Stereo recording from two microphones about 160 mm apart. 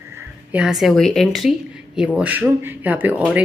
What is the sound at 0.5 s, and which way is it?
Speech, centre (ahead or behind).